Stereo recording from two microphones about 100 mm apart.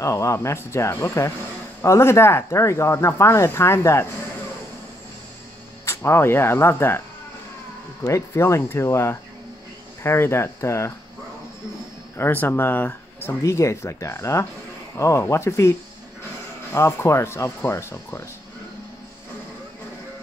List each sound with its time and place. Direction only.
0.0 s speech: 30° left (ahead or behind)
5.9 s speech: 25° left (ahead or behind)
8.0 s speech: 30° left (ahead or behind)
12.2 s speech: 20° left (ahead or behind)
13.4 s speech: 30° left (ahead or behind)
16.7 s speech: 30° left (ahead or behind)